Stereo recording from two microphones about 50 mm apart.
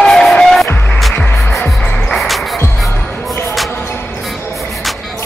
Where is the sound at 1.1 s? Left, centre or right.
Left.